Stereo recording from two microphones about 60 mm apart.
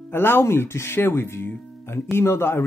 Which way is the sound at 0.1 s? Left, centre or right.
Left.